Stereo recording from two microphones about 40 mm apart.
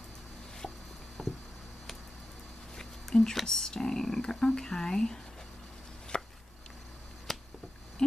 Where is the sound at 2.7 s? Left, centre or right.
Centre.